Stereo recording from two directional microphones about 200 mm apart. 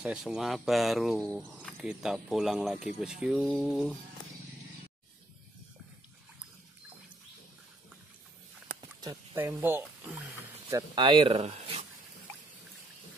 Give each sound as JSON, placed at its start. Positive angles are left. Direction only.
{"t": 0.0, "sound": "speech", "side_deg": -5}
{"t": 9.0, "sound": "speech", "side_deg": -15}